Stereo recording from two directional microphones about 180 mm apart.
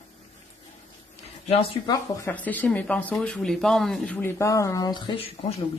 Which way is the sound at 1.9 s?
10° left (ahead or behind).